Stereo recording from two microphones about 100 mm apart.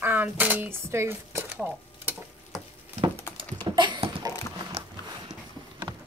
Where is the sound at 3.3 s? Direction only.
55° right (ahead or behind).